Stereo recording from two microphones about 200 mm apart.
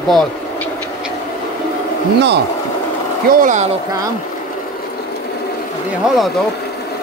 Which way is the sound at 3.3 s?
40° right (ahead or behind).